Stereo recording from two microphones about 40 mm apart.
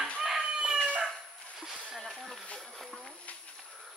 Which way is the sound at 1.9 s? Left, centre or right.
Centre.